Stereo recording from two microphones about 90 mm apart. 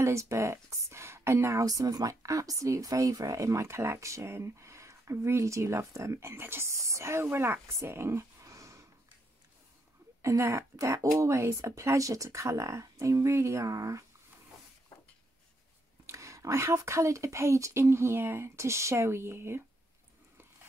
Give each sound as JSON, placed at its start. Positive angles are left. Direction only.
{"t": 0.0, "sound": "a woman's voice", "side_deg": -30}
{"t": 10.2, "sound": "a woman's voice", "side_deg": -35}
{"t": 16.1, "sound": "a woman's voice", "side_deg": -35}